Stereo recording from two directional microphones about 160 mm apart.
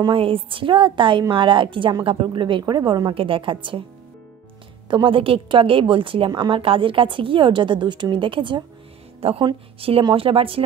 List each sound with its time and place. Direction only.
0.0 s a woman's voice: 35° right (ahead or behind)
4.8 s a woman's voice: 30° right (ahead or behind)